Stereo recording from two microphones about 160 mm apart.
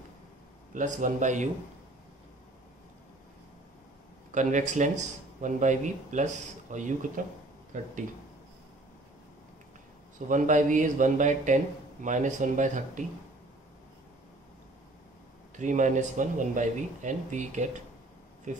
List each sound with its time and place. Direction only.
0.7 s a man's voice: 55° right (ahead or behind)
4.3 s a man's voice: 50° right (ahead or behind)
10.2 s a man's voice: 55° right (ahead or behind)
15.5 s a man's voice: 50° right (ahead or behind)